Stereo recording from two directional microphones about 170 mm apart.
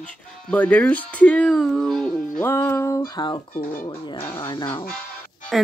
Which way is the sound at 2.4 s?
10° left (ahead or behind).